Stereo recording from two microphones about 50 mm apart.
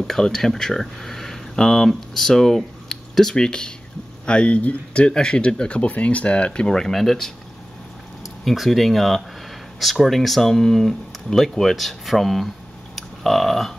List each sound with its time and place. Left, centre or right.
0.0 s speech: centre
8.5 s speech: centre
12.9 s a sound: centre